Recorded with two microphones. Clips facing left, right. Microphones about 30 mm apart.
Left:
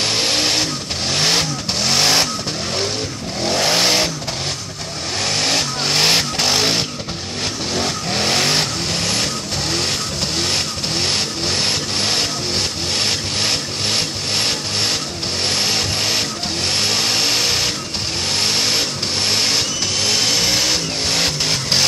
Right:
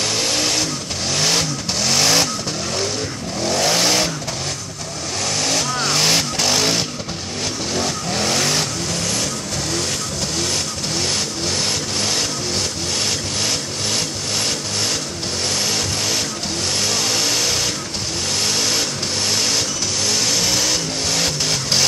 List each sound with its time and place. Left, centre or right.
0.0 s vehicle: left
3.4 s vehicle: left
5.2 s vehicle: left
10.4 s vehicle: left
15.4 s a sound: left
18.3 s vehicle: left